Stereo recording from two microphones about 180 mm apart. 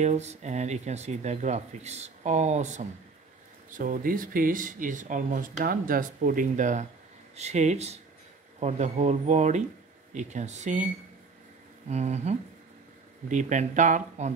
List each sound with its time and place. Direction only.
0.0 s speech: 40° right (ahead or behind)
11.9 s speech: 40° right (ahead or behind)